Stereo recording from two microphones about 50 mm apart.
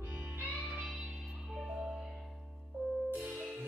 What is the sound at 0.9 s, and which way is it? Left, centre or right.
Music, centre.